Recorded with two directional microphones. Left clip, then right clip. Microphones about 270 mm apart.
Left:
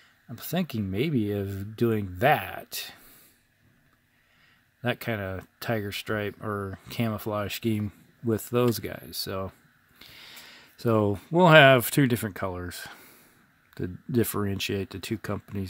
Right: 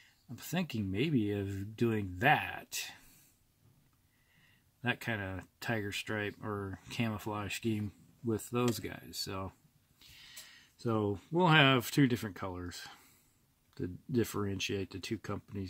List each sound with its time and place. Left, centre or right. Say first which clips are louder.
0.4 s speech: left 7 dB; left
4.8 s speech: left 6 dB; left